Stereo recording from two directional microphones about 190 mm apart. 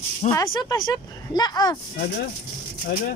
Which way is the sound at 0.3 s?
15° left (ahead or behind).